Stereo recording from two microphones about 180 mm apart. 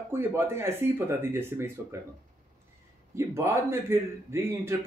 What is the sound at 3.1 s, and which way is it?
A man's voice, 15° right (ahead or behind).